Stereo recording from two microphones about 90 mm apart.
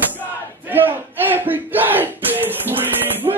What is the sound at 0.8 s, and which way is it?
Music, 20° right (ahead or behind).